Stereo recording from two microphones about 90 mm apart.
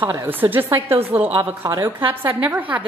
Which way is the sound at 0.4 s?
25° right (ahead or behind).